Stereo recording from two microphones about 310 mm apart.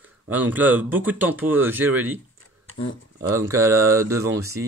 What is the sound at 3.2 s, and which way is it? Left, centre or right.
Speech, centre.